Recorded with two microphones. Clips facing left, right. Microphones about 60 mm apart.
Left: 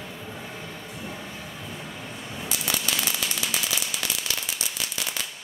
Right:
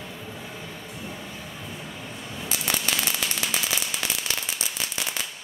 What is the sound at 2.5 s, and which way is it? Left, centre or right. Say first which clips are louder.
Firecracker: right 1 dB; right.